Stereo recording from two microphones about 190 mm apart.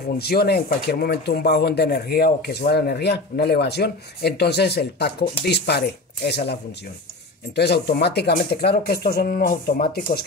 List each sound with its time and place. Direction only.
0.2 s speech: 55° left (ahead or behind)